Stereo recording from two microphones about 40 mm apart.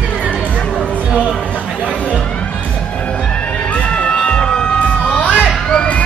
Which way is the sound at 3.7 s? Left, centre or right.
Left.